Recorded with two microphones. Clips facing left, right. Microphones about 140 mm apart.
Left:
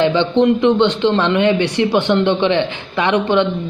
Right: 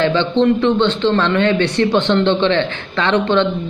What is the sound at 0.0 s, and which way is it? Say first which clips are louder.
A man's voice: left 1 dB; 15° left (ahead or behind).